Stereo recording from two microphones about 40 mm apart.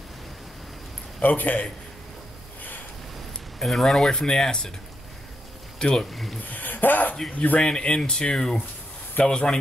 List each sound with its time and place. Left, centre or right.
1.2 s a man's voice: left
3.5 s speech: centre
5.8 s speech: centre
6.4 s a sound: left
7.5 s speech: left